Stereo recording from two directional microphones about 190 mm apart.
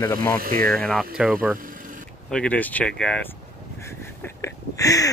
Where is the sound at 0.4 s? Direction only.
50° right (ahead or behind).